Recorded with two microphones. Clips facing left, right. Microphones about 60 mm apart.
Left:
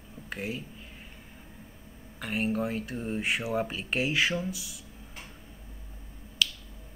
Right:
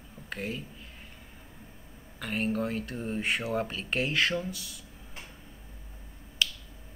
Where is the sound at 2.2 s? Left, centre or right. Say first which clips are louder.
Left 1 dB; centre.